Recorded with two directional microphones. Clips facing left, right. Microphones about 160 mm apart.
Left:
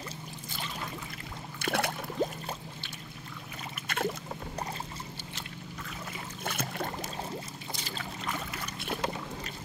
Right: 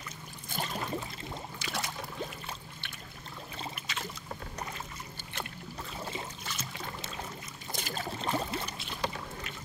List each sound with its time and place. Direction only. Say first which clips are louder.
0.5 s boat: right 5 dB; 45° right (ahead or behind)
1.6 s a sound: left 9 dB; 60° left (ahead or behind)
2.2 s boat: left 10 dB; 40° left (ahead or behind)
3.8 s boat: left 9 dB; 55° left (ahead or behind)
6.4 s boat: left 7 dB; 55° left (ahead or behind)
7.7 s boat: right 4 dB; 50° right (ahead or behind)
8.2 s boat: right 5 dB; 30° right (ahead or behind)
8.7 s boat: left 7 dB; 55° left (ahead or behind)